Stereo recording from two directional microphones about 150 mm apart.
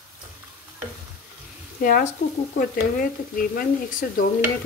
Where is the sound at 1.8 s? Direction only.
65° left (ahead or behind).